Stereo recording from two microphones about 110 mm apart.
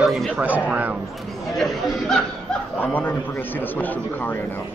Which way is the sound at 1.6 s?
5° left (ahead or behind).